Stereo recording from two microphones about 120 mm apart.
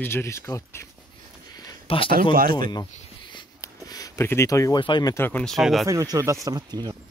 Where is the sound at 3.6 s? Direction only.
30° left (ahead or behind).